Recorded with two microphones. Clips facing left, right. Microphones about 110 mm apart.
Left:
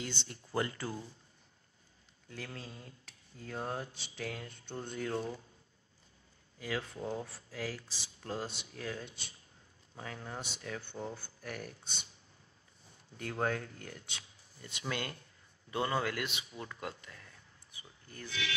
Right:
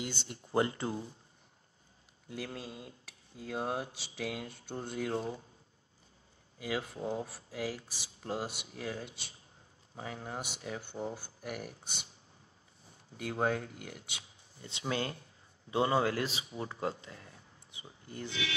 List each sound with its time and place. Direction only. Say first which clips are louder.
0.3 s speech: right 6 dB; 25° right (ahead or behind)
2.2 s speech: right 4 dB; 10° right (ahead or behind)
5.1 s speech: even; 25° right (ahead or behind)
6.6 s speech: right 2 dB; 15° right (ahead or behind)
9.0 s speech: right 2 dB; 5° right (ahead or behind)
9.9 s speech: right 3 dB; 20° right (ahead or behind)
13.2 s speech: right 2 dB; 15° right (ahead or behind)
14.6 s speech: right 4 dB; 25° right (ahead or behind)